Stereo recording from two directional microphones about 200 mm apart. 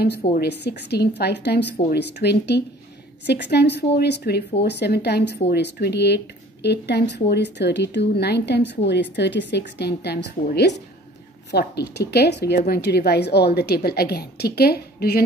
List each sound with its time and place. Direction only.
0.4 s a woman's voice: 55° left (ahead or behind)